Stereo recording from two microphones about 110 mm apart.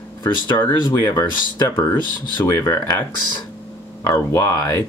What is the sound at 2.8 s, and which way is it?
Speech, 40° left (ahead or behind).